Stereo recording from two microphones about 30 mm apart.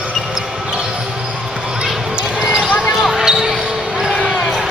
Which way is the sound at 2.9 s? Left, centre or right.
Centre.